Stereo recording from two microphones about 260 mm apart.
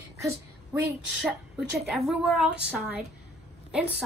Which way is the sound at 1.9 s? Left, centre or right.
Centre.